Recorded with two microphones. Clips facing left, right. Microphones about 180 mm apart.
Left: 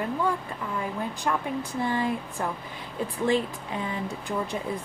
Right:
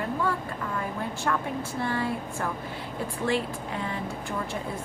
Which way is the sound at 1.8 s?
15° left (ahead or behind).